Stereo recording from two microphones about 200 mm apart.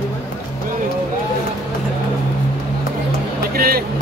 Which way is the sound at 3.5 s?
50° right (ahead or behind).